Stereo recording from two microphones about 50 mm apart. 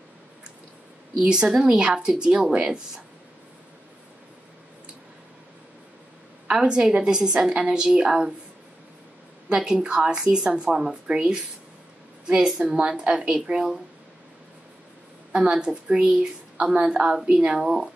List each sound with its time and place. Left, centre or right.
1.3 s a woman's voice: centre
6.5 s a woman's voice: centre
7.5 s a woman's voice: right
9.8 s a woman's voice: right
15.3 s a woman's voice: centre